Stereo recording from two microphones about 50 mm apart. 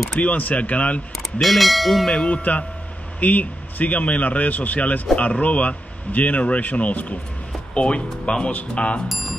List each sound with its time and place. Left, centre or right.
0.2 s speech: left
1.1 s speech: centre
2.0 s speech: left
9.1 s music: centre